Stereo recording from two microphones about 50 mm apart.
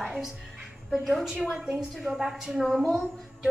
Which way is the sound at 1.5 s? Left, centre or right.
Right.